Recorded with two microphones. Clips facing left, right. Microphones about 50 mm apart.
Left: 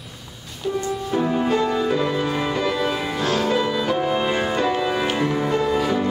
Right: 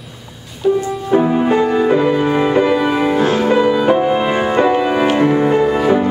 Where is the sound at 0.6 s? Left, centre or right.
Centre.